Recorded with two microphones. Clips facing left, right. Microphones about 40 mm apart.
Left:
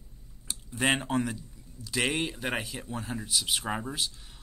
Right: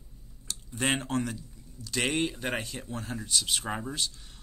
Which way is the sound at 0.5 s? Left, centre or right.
Centre.